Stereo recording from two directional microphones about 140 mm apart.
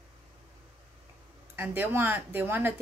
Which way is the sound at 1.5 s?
15° right (ahead or behind).